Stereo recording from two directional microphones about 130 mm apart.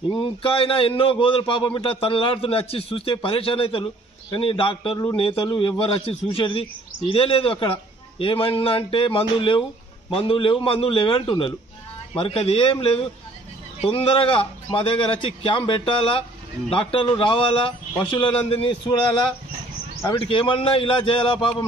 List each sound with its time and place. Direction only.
0.1 s a man's voice: 40° left (ahead or behind)
13.7 s a man's voice: 45° left (ahead or behind)